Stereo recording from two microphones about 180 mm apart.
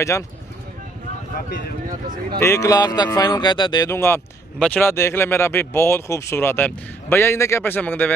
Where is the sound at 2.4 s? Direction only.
15° left (ahead or behind).